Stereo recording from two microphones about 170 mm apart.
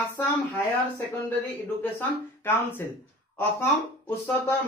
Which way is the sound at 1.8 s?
10° left (ahead or behind).